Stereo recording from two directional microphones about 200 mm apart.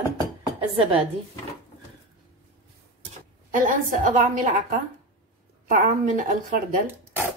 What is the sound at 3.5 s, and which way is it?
A woman's voice, 40° right (ahead or behind).